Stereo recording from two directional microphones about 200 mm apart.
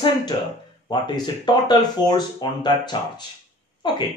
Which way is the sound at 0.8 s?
20° left (ahead or behind).